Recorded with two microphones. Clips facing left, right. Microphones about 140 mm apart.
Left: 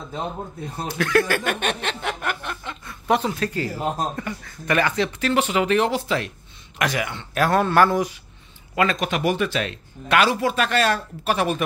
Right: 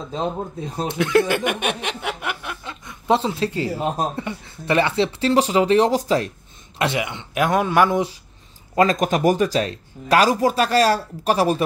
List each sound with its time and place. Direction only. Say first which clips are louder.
0.1 s speech: right 5 dB; 20° right (ahead or behind); by 6.3 s 35° right (ahead or behind)
6.8 s speech: right 2 dB; 25° right (ahead or behind)
8.7 s speech: right 4 dB; 40° right (ahead or behind)